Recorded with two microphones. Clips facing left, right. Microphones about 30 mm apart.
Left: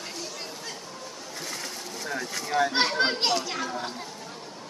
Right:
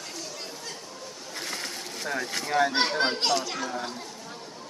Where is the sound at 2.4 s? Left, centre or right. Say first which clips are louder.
Right 1 dB; right.